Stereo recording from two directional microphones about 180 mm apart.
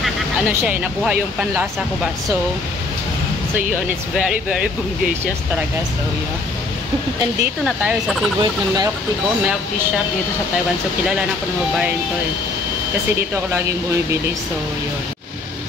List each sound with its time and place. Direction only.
0.5 s speech: 10° right (ahead or behind)
4.3 s speech: 5° right (ahead or behind)
7.6 s speech: 5° right (ahead or behind)
8.4 s speech: 20° right (ahead or behind)